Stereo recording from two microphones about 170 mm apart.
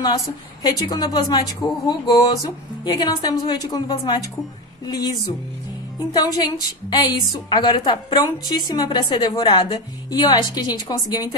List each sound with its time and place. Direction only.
0.6 s a woman's voice: 25° left (ahead or behind)
6.2 s a woman's voice: 25° left (ahead or behind)